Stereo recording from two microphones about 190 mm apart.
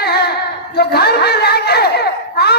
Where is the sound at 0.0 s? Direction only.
55° left (ahead or behind).